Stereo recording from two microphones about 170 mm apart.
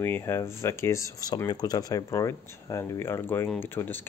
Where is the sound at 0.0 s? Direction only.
15° left (ahead or behind).